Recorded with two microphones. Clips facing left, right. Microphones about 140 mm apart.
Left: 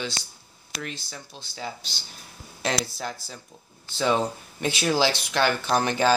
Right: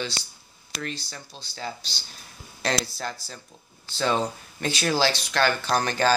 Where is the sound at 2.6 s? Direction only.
10° left (ahead or behind).